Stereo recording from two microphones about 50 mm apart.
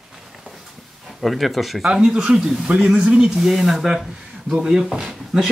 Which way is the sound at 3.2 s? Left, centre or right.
Centre.